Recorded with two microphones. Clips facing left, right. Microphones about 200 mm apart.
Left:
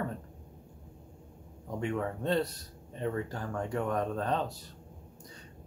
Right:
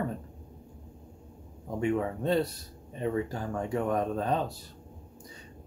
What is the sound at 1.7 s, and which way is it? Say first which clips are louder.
Speech: right 4 dB; 10° right (ahead or behind).